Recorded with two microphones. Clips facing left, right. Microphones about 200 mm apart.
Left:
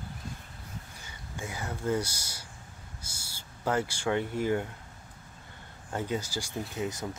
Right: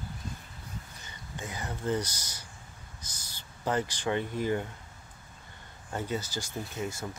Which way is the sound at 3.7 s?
10° left (ahead or behind).